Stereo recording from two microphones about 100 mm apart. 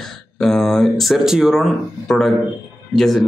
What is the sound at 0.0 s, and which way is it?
A man's voice, 5° left (ahead or behind).